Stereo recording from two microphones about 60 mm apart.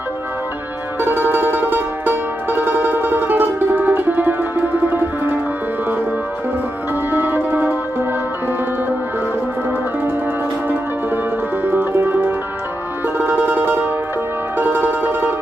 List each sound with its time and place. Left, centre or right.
1.0 s music: right
7.1 s music: right
11.6 s music: right